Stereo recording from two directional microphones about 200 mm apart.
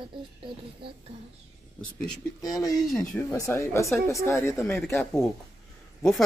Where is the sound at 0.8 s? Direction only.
25° right (ahead or behind).